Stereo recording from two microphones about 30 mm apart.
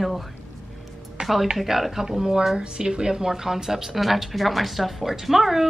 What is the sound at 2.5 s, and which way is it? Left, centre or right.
Speech, right.